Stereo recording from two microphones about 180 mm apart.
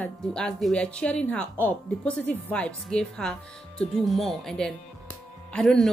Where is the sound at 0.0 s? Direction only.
5° left (ahead or behind).